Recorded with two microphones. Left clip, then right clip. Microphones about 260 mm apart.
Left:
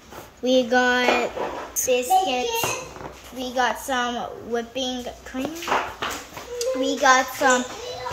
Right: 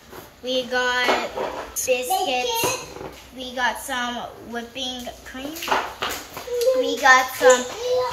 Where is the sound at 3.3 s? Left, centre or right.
Left.